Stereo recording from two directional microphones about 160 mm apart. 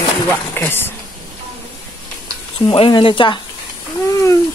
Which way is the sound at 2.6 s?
30° left (ahead or behind).